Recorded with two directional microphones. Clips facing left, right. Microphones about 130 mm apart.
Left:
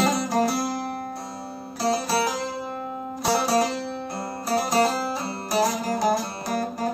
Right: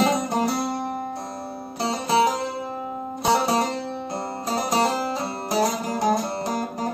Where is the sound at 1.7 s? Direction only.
20° right (ahead or behind).